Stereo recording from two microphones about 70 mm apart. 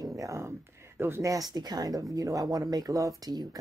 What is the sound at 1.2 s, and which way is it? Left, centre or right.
Speech, right.